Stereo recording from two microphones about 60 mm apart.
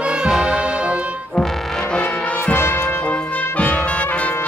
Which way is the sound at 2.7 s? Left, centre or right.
Left.